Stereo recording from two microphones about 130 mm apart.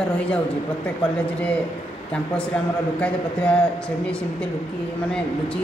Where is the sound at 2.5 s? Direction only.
5° left (ahead or behind).